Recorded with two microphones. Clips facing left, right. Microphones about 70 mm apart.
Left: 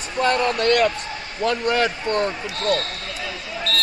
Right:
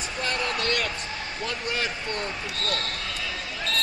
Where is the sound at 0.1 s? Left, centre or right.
Left.